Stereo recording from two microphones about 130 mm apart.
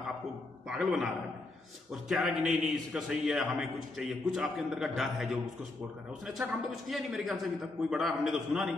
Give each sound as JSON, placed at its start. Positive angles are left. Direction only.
{"t": 0.7, "sound": "a man's voice", "side_deg": 0}